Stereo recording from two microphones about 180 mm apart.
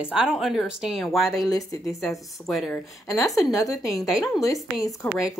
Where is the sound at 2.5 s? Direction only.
Centre (ahead or behind).